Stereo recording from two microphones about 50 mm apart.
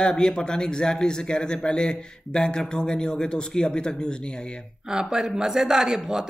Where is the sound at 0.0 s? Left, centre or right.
Centre.